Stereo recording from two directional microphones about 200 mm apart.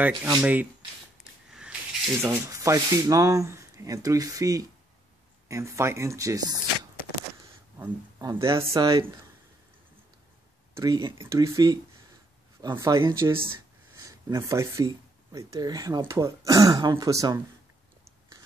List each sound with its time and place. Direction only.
0.4 s speech: 10° right (ahead or behind)
1.2 s a sound: 5° right (ahead or behind)
2.2 s speech: 15° right (ahead or behind)
10.7 s speech: 20° right (ahead or behind)